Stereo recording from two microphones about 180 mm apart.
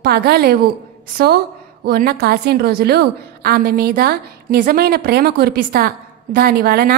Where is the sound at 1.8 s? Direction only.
60° right (ahead or behind).